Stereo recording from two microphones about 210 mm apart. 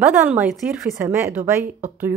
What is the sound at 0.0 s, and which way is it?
A woman's voice, 5° right (ahead or behind).